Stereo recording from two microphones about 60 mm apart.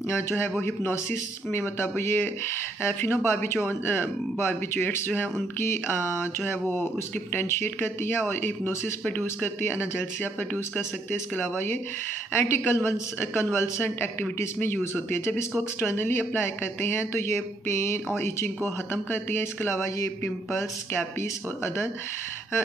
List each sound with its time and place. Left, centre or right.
0.1 s speech: left
11.1 s speech: left